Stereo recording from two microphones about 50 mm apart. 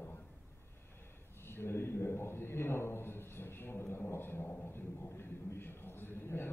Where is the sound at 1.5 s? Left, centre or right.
Left.